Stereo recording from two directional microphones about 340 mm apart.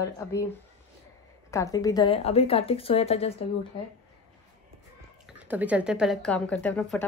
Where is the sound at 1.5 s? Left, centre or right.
Centre.